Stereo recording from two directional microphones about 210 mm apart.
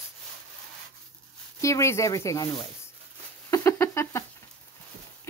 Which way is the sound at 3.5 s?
10° left (ahead or behind).